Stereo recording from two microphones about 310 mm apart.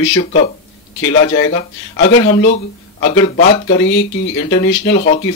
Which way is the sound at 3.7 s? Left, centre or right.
Left.